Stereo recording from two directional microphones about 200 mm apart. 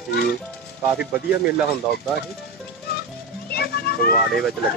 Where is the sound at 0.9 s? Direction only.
50° left (ahead or behind).